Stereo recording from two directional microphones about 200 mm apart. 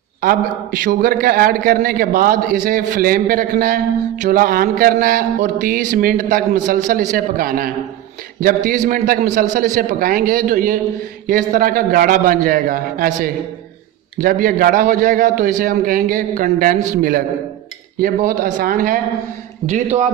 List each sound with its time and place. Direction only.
0.2 s a man's voice: 45° right (ahead or behind)